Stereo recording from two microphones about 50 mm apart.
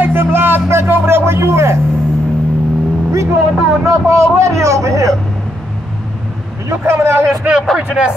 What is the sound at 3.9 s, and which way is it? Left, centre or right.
A man's voice, right.